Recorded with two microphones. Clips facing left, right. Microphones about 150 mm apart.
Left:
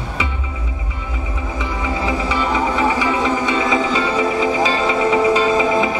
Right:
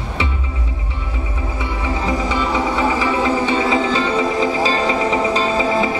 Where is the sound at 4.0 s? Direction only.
10° left (ahead or behind).